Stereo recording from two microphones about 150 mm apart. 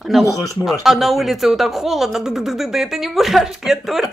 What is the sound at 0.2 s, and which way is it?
Speech, 20° left (ahead or behind).